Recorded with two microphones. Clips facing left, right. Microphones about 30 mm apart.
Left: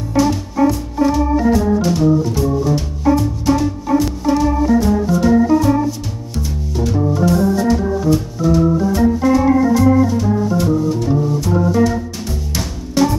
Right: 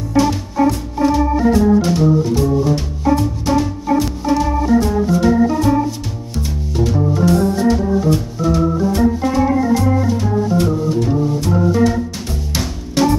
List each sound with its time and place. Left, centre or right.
0.1 s music: centre
0.9 s organ: centre
6.4 s music: centre
6.9 s organ: centre